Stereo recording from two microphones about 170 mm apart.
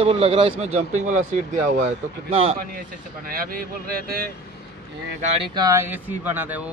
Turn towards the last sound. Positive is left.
turn(degrees=-10)  # may be behind; listen again after turning